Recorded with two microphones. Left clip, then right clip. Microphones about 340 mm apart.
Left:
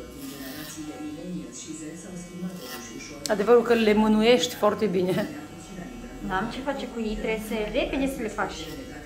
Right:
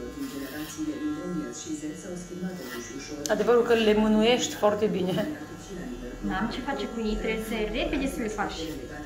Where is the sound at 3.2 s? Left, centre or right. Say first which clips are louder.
Left 3 dB; centre.